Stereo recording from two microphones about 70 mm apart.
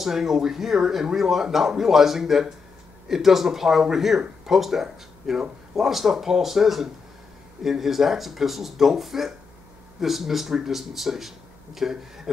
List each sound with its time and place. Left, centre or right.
0.0 s speech: centre